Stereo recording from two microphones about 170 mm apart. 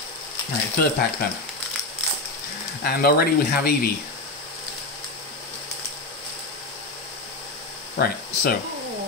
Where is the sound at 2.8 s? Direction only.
65° left (ahead or behind).